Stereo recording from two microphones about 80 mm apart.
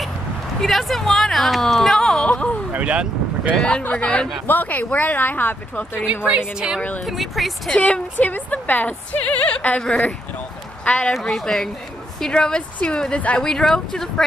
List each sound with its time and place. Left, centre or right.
0.6 s speech: centre
2.2 s speech: centre
2.7 s speech: centre
3.6 s speech: centre
6.0 s a woman's voice: centre
7.1 s speech: centre
7.7 s speech: centre